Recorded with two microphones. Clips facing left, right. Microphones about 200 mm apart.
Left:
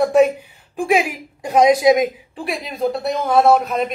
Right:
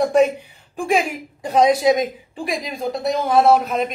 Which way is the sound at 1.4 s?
15° left (ahead or behind).